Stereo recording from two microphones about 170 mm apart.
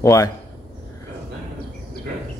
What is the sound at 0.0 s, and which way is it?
Speech, 20° left (ahead or behind).